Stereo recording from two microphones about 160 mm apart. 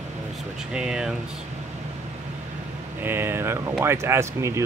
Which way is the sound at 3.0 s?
15° right (ahead or behind).